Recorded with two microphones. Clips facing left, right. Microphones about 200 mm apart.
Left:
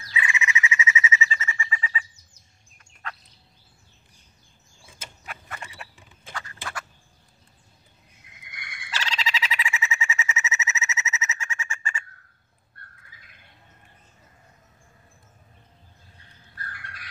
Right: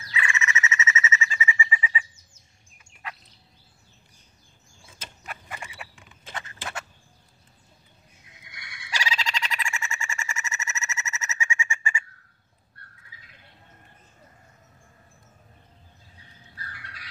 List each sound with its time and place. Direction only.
0.2 s bird: 15° left (ahead or behind)
1.4 s bird: 10° right (ahead or behind)
2.8 s turkey: 10° right (ahead or behind)
6.3 s a sound: 25° right (ahead or behind)
8.4 s turkey: 50° left (ahead or behind)
8.9 s frog: 10° right (ahead or behind)
9.2 s bird: centre (ahead or behind)
11.4 s bird: 10° right (ahead or behind)
12.7 s bird: 50° left (ahead or behind)
16.5 s bird: 50° left (ahead or behind)